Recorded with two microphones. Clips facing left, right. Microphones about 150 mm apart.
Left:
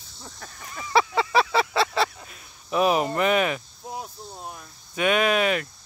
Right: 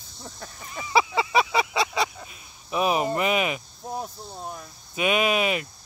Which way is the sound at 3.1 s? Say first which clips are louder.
Left 2 dB; 10° right (ahead or behind).